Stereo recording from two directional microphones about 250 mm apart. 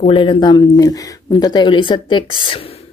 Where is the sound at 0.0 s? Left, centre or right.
Left.